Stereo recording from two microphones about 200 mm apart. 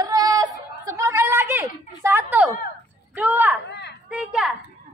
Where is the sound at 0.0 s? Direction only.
20° right (ahead or behind).